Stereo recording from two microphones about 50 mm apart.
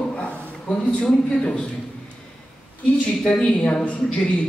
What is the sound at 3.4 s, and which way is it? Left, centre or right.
Speech, left.